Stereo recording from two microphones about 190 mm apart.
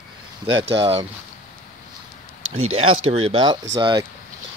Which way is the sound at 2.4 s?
90° right.